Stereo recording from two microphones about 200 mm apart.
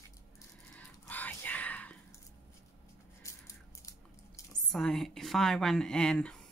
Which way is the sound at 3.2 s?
15° left (ahead or behind).